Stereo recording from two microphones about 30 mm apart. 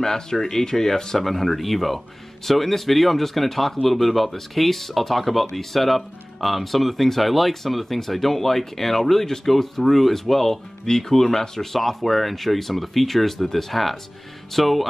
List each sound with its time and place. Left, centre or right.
0.0 s speech: centre